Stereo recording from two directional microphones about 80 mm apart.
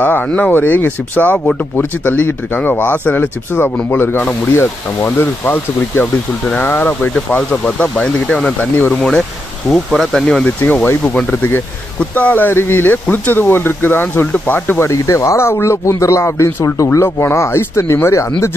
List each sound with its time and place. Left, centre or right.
0.0 s speech: left
9.7 s speech: centre
10.2 s speech: centre
10.6 s speech: left
14.8 s speech: left